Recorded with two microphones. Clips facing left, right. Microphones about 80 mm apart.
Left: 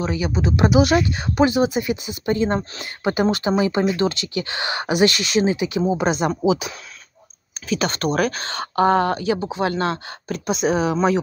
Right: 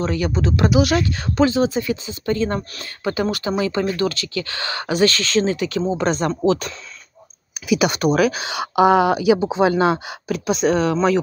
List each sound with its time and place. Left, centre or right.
0.0 s speech: centre
0.7 s speech: left
7.6 s speech: centre
10.3 s speech: centre